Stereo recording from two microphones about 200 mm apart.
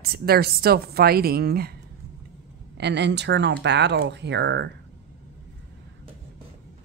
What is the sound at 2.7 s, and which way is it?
Speech, 60° right (ahead or behind).